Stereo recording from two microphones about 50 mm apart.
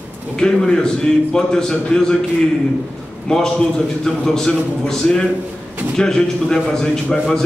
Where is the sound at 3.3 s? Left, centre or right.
Centre.